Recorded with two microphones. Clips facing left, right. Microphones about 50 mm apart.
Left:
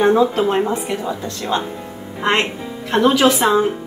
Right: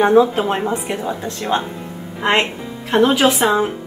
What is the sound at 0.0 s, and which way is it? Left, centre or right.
Speech, centre.